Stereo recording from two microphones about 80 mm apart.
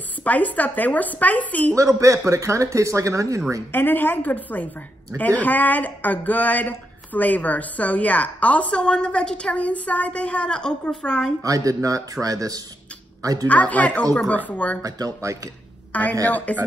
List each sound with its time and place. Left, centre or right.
0.2 s a woman's voice: centre
1.8 s speech: right
3.7 s a woman's voice: left
11.4 s speech: right
13.5 s speech: centre
14.8 s speech: right
15.9 s a woman's voice: centre